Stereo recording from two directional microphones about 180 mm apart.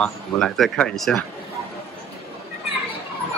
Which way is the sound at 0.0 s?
5° left (ahead or behind).